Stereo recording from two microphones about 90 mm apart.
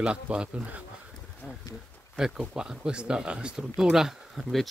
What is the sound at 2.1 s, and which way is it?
Speech, 5° right (ahead or behind).